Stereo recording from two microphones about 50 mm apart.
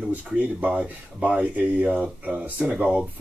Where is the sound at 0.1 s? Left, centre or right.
Right.